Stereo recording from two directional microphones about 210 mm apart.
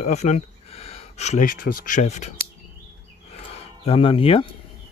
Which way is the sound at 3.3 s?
30° left (ahead or behind).